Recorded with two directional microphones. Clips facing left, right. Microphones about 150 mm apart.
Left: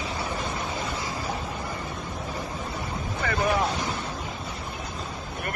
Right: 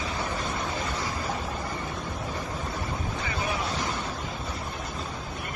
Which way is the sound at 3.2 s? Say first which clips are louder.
Left 5 dB; 65° left (ahead or behind).